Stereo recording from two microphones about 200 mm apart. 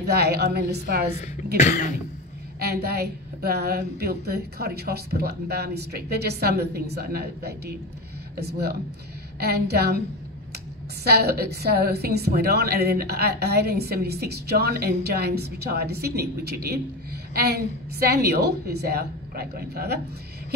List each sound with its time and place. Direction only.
0.0 s a woman's voice: 55° right (ahead or behind)
1.6 s cough: 40° left (ahead or behind)
2.6 s a woman's voice: 50° right (ahead or behind)
11.1 s a woman's voice: 50° right (ahead or behind)